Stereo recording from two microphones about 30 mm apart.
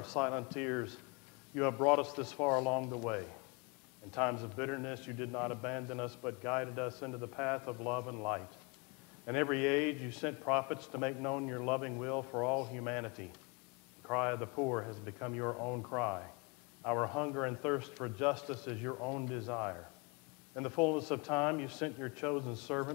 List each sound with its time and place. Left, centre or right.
0.0 s a man's voice: centre
5.2 s a man's voice: centre
6.9 s a man's voice: centre